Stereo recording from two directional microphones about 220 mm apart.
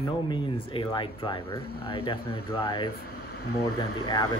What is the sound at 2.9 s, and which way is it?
Speech, 45° left (ahead or behind).